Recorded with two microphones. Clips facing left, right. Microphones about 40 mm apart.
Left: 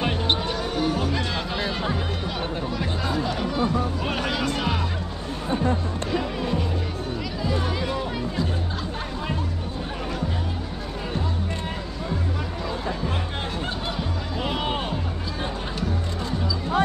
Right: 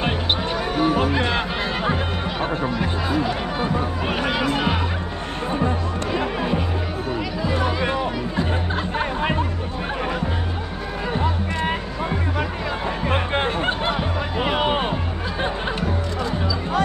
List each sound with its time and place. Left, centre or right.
0.7 s music: right
1.0 s music: right
2.8 s music: centre
6.1 s music: right
11.1 s music: right